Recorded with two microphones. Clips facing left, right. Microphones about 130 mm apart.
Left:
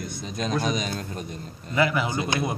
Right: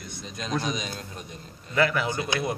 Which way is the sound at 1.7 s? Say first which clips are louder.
Left 1 dB; 10° left (ahead or behind).